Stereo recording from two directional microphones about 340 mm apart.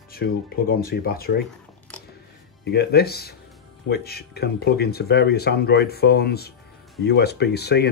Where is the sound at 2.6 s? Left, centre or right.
Left.